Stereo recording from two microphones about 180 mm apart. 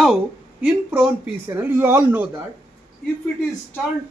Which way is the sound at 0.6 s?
10° right (ahead or behind).